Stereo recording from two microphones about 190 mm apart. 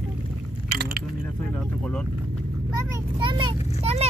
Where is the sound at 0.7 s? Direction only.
55° right (ahead or behind).